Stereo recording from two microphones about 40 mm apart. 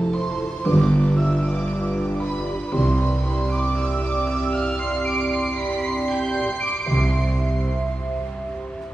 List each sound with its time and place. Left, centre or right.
0.7 s music: left
2.7 s music: left